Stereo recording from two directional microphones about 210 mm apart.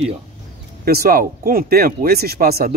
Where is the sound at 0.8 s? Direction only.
45° right (ahead or behind).